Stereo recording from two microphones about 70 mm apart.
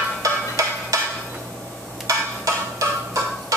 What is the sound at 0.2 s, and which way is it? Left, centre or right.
Music, right.